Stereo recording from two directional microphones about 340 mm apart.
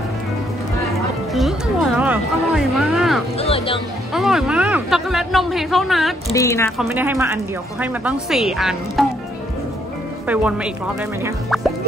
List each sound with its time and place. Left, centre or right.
1.3 s a sound: centre
3.3 s speech: centre
4.1 s speech: centre
6.9 s speech: centre
10.2 s speech: centre
11.2 s music: centre